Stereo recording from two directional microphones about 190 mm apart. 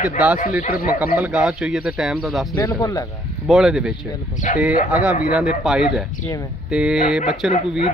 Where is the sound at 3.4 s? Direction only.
Centre (ahead or behind).